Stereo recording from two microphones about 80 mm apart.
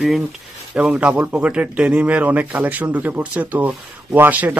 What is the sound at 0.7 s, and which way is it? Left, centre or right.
A man's voice, centre.